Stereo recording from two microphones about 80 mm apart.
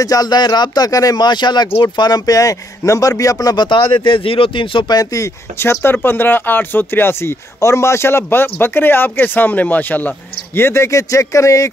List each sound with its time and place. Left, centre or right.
0.0 s speech: left
3.6 s speech: left
4.9 s speech: left